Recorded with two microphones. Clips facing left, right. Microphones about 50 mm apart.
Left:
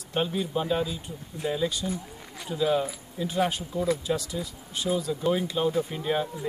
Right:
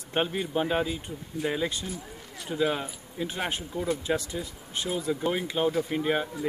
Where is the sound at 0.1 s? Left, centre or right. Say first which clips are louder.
Even; right.